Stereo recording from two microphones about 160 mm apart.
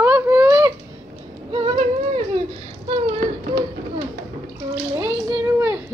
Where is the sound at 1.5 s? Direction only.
35° right (ahead or behind).